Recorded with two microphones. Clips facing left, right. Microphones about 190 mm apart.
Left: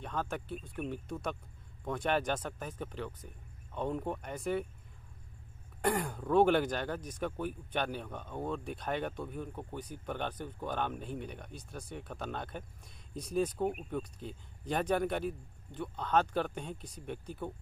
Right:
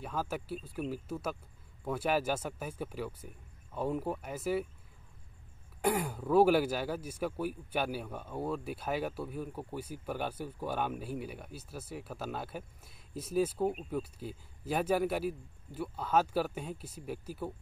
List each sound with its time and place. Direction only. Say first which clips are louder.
0.0 s speech: right 1 dB; 5° right (ahead or behind)
5.8 s speech: right 1 dB; 5° right (ahead or behind)